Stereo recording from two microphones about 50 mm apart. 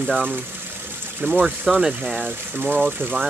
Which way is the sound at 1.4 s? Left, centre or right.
Centre.